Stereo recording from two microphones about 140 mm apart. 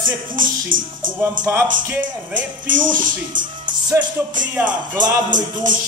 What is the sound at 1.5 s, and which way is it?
Speech, 20° right (ahead or behind).